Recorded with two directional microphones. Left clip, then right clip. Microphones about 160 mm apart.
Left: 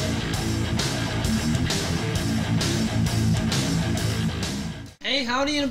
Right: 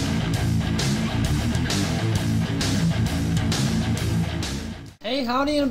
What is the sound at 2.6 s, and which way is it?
Music, centre (ahead or behind).